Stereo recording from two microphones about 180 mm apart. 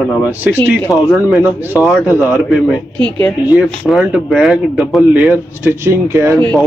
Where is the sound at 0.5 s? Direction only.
15° left (ahead or behind).